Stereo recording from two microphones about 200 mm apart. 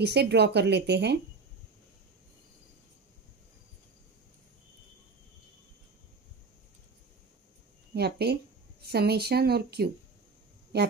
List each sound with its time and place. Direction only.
0.0 s speech: 55° right (ahead or behind)
7.9 s speech: 55° right (ahead or behind)